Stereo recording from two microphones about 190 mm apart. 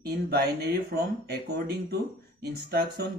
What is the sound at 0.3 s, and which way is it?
Speech, 60° right (ahead or behind).